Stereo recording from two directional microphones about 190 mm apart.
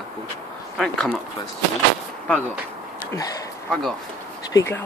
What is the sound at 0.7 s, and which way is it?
Speech, 5° left (ahead or behind).